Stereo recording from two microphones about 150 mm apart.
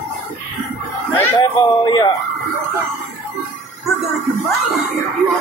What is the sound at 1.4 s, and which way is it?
Speech, 30° left (ahead or behind).